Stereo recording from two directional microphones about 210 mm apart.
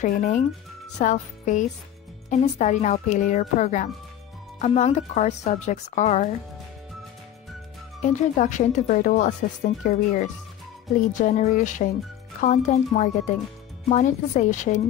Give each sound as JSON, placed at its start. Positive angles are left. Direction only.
{"t": 0.0, "sound": "speech", "side_deg": 35}
{"t": 8.0, "sound": "speech", "side_deg": 35}